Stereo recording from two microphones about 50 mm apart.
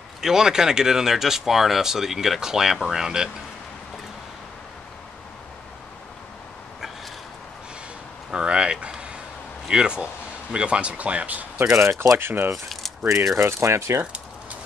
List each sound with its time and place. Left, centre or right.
0.2 s speech: centre
8.3 s a sound: centre
9.7 s speech: centre
11.7 s speech: right
12.2 s speech: right
13.4 s speech: right